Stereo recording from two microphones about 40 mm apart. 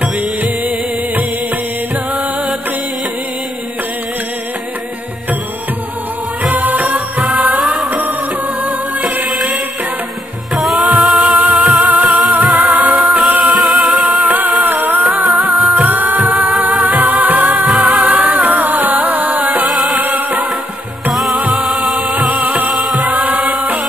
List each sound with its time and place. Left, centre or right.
0.0 s music: right
6.4 s music: right
7.6 s music: centre
9.0 s music: right
10.6 s music: centre
11.1 s music: right
11.3 s music: right
17.6 s music: centre
18.0 s music: right
21.6 s music: centre
22.3 s music: right
22.8 s music: centre
23.2 s music: right